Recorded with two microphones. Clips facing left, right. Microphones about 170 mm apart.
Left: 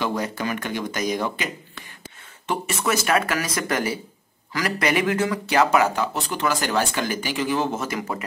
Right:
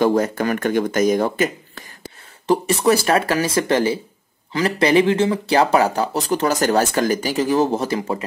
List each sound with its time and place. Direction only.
0.0 s speech: 45° right (ahead or behind)